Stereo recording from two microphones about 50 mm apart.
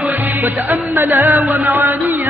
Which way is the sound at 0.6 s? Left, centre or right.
Right.